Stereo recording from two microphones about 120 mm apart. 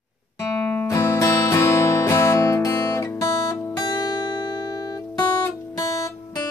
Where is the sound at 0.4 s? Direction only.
25° left (ahead or behind).